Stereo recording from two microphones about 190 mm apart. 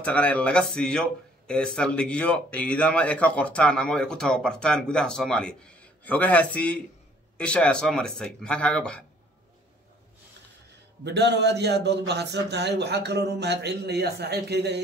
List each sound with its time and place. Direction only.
0.0 s speech: 5° left (ahead or behind)
11.1 s a man's voice: 65° right (ahead or behind)